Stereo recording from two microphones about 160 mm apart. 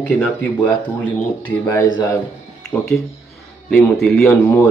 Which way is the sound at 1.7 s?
25° left (ahead or behind).